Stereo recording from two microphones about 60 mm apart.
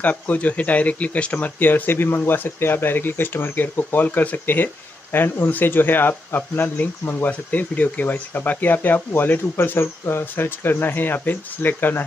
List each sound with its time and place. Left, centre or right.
0.0 s speech: left